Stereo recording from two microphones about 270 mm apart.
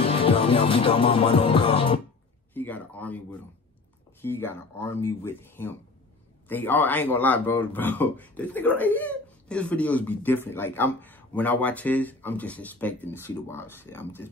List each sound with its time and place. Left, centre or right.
0.0 s music: left
2.5 s speech: centre